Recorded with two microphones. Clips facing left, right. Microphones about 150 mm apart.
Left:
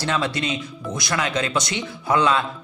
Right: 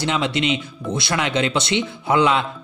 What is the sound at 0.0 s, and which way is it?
Speech, 20° right (ahead or behind).